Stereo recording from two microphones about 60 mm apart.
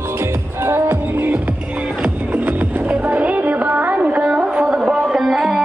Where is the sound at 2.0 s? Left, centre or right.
Right.